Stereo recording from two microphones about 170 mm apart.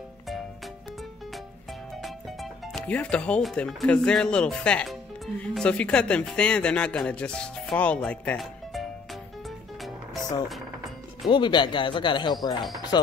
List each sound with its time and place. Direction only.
2.0 s speech: centre (ahead or behind)
11.2 s speech: 25° left (ahead or behind)